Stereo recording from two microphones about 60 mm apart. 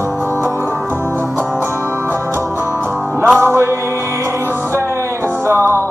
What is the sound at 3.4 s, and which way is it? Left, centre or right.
Music, right.